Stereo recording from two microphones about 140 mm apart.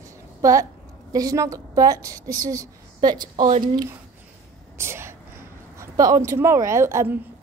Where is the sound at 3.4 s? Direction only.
70° right (ahead or behind).